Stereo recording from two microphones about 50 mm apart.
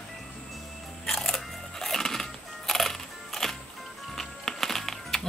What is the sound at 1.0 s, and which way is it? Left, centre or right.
Crunch, centre.